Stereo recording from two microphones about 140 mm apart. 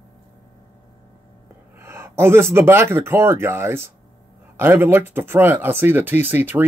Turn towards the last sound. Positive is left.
turn(degrees=-15)  # may be behind; listen again after turning